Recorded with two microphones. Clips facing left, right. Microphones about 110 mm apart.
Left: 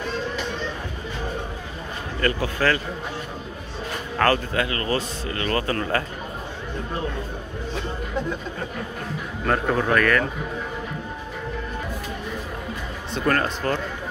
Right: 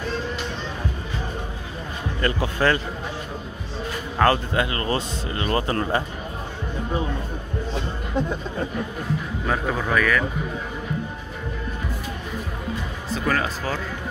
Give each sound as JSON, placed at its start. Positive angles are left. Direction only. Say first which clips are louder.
{"t": 2.2, "sound": "speech", "louder": "right 1 dB", "side_deg": -20}
{"t": 4.2, "sound": "speech", "louder": "right 1 dB", "side_deg": -20}
{"t": 9.5, "sound": "a man's voice", "louder": "left 3 dB", "side_deg": -5}
{"t": 13.1, "sound": "a man's voice", "louder": "left 1 dB", "side_deg": -5}